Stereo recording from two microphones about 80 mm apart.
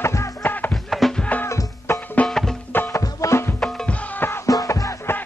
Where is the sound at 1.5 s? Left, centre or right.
Left.